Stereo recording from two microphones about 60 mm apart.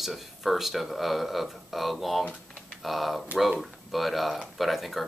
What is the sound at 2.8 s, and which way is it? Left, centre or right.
Speech, centre.